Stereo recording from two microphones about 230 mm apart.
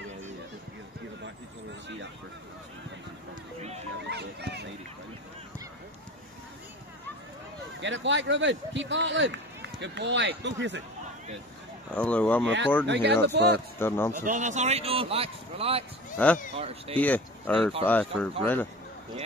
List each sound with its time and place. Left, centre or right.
4.0 s music: right
7.8 s speech: right
11.9 s speech: centre
12.8 s speech: right
13.7 s speech: centre
14.1 s a man's voice: right
16.2 s speech: centre
16.5 s a man's voice: right
17.0 s speech: centre